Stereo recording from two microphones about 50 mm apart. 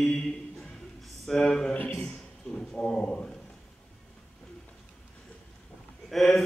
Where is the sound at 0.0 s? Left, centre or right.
Centre.